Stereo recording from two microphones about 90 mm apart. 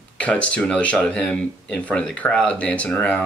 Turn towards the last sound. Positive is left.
turn(degrees=15)  # may be behind; listen again after turning